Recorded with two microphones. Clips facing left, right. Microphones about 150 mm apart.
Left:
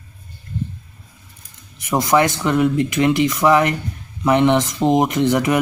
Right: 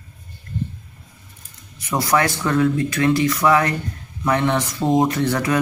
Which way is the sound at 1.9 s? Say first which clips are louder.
Left 3 dB; 20° left (ahead or behind).